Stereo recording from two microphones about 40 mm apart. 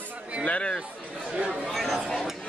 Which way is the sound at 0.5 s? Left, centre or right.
Left.